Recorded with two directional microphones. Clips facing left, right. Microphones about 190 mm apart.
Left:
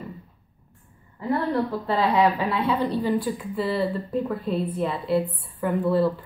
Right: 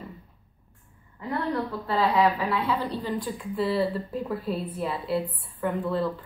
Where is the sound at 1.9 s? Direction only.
25° left (ahead or behind).